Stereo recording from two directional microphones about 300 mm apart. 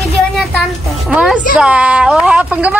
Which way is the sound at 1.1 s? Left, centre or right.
Centre.